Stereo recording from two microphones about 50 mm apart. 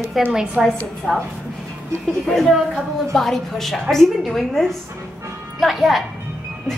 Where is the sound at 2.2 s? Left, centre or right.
Centre.